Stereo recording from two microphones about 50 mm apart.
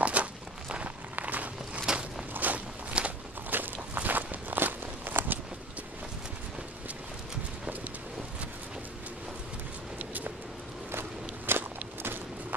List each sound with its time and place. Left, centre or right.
0.0 s walk: right
1.8 s walk: centre
2.3 s walk: right
3.0 s walk: right
3.4 s walk: right
10.9 s walk: right